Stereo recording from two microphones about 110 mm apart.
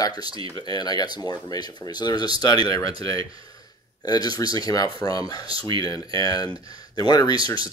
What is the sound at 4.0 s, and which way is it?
Speech, 40° left (ahead or behind).